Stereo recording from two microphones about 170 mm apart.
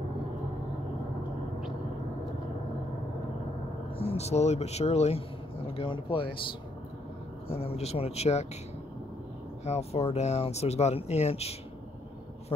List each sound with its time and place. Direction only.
4.0 s speech: 35° left (ahead or behind)
7.5 s speech: 35° left (ahead or behind)
9.7 s speech: 40° left (ahead or behind)